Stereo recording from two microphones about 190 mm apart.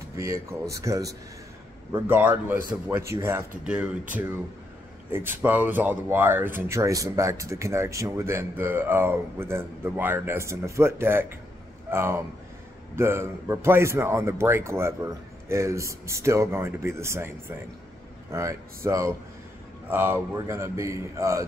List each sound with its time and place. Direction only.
0.1 s speech: 15° right (ahead or behind)
5.1 s speech: 10° right (ahead or behind)
18.3 s speech: 15° right (ahead or behind)